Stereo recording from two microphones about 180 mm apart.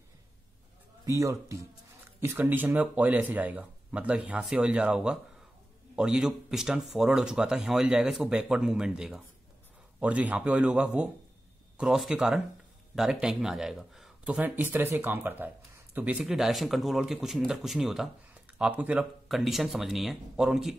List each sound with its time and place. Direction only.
1.0 s speech: 15° right (ahead or behind)